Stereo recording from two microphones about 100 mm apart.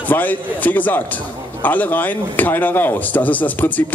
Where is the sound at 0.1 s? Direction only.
15° left (ahead or behind).